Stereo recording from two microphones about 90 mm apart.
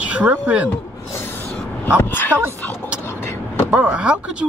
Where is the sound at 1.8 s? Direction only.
25° left (ahead or behind).